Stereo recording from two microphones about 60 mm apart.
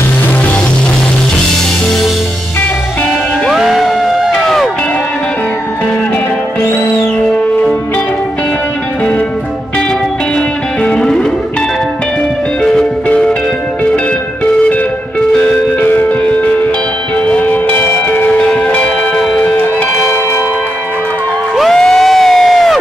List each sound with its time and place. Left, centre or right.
3.4 s music: centre
10.8 s music: centre
14.4 s music: left
15.9 s music: left
17.3 s music: left
21.5 s crowd: centre